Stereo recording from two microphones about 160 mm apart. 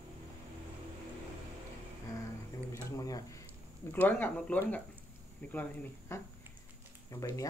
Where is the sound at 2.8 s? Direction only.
20° left (ahead or behind).